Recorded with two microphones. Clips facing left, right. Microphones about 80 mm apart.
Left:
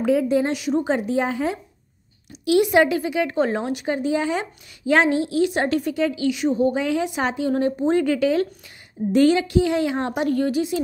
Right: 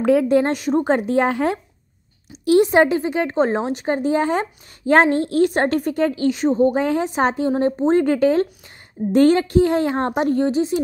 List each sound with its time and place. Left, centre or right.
0.0 s a woman's voice: right
2.4 s a woman's voice: right
7.5 s a woman's voice: right